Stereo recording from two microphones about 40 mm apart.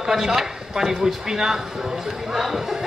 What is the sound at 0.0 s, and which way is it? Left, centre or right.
Speech, centre.